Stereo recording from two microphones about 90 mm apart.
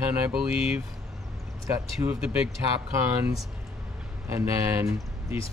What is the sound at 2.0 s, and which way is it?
Speech, 15° right (ahead or behind).